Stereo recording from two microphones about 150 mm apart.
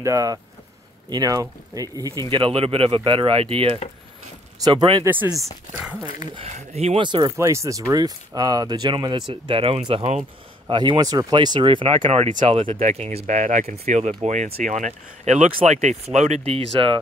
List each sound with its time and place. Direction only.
0.0 s speech: 20° right (ahead or behind)
2.2 s speech: 35° right (ahead or behind)
5.0 s speech: 10° right (ahead or behind)
6.3 s speech: 45° right (ahead or behind)
7.1 s speech: 30° right (ahead or behind)
7.3 s speech: 20° right (ahead or behind); by 17.0 s 35° right (ahead or behind)